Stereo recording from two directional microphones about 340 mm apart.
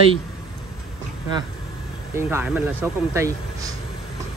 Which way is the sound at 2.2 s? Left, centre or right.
Centre.